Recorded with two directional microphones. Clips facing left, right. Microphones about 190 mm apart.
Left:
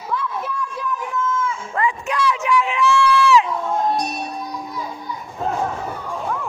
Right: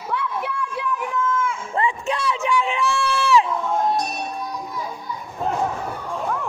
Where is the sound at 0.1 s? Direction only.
75° right (ahead or behind).